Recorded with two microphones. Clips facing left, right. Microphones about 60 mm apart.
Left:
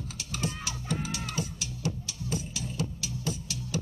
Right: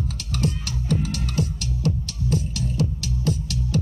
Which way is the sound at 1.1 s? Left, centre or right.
Right.